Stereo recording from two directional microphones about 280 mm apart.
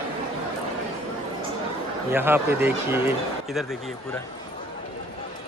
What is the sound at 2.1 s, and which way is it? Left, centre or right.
A man's voice, centre.